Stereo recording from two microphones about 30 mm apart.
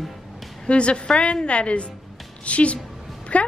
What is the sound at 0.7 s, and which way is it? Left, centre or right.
A woman's voice, left.